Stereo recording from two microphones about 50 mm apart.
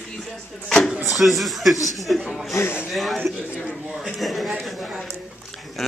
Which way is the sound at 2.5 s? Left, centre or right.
Left.